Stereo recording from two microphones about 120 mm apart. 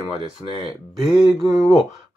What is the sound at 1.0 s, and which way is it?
Speech, centre (ahead or behind).